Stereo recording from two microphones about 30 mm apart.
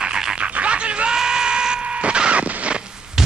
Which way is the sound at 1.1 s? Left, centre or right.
Right.